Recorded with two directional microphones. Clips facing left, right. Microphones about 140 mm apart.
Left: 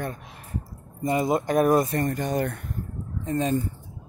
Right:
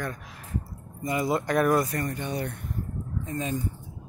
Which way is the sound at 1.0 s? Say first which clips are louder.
Left 3 dB; 25° left (ahead or behind).